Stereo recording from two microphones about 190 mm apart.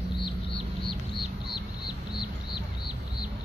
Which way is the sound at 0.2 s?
30° left (ahead or behind).